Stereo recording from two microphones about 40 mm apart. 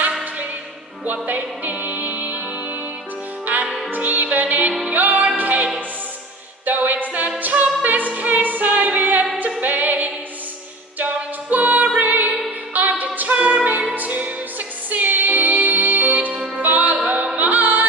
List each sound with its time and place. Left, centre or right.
1.0 s music: right
3.9 s music: right